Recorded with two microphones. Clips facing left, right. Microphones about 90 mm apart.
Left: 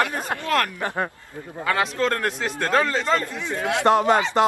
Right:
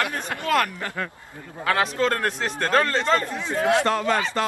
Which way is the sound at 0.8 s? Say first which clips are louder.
Left 4 dB; 30° left (ahead or behind).